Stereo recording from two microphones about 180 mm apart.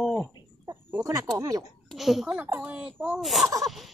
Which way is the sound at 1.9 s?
Centre (ahead or behind).